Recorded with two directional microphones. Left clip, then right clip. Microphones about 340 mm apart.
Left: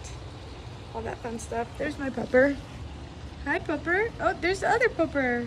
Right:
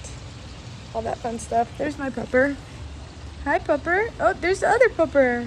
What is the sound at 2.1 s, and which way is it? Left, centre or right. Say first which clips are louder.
Speech: right 1 dB; right.